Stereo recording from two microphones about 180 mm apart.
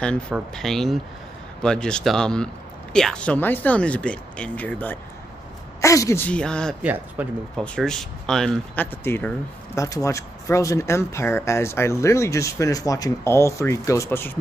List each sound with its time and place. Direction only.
0.3 s speech: centre (ahead or behind)
6.8 s speech: 10° right (ahead or behind)
7.5 s speech: 5° left (ahead or behind)